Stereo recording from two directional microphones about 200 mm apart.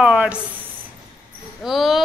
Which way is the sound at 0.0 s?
5° right (ahead or behind).